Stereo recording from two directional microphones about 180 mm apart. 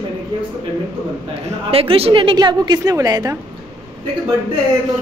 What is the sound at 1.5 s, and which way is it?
A woman's voice, 35° right (ahead or behind).